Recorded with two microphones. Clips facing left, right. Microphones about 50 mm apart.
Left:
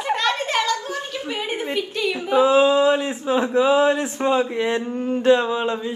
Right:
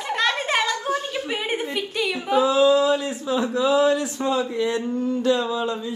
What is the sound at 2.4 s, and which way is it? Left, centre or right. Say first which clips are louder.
Speech: left 2 dB; left.